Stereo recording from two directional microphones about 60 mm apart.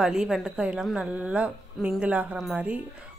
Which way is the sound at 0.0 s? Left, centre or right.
Centre.